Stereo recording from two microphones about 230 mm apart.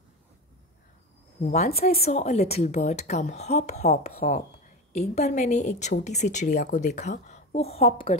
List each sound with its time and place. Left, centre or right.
1.4 s a woman's voice: left
1.8 s a woman's voice: left
2.0 s a woman's voice: left
4.2 s a woman's voice: left
4.9 s a woman's voice: left